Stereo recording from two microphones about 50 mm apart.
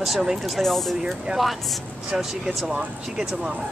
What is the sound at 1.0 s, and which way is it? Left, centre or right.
Speech, centre.